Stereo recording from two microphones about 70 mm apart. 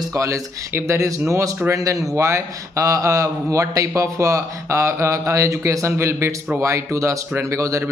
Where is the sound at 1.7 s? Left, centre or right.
Right.